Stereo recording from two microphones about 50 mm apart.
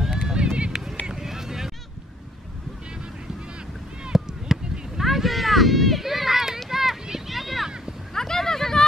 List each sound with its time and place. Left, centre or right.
0.0 s run: centre
1.0 s vehicle: centre
4.1 s a sound: centre